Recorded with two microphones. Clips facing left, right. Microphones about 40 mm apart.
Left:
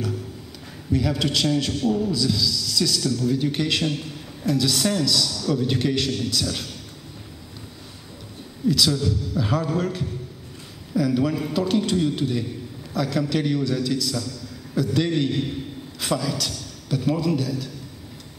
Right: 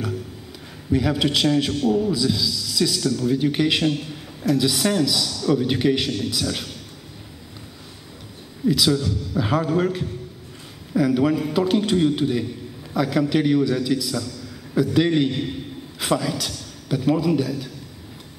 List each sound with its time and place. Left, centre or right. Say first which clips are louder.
0.9 s a man's voice: right 2 dB; centre
8.6 s a man's voice: right 2 dB; centre